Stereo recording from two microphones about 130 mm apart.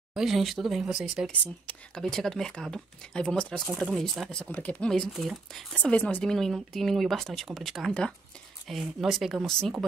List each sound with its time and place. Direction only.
0.1 s speech: centre (ahead or behind)
1.4 s speech: 5° left (ahead or behind)